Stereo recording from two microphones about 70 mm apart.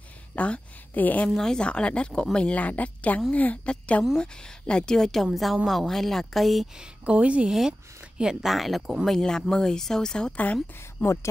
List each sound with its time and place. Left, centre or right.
0.4 s speech: left
1.3 s a woman's voice: centre
6.8 s speech: centre
10.4 s speech: left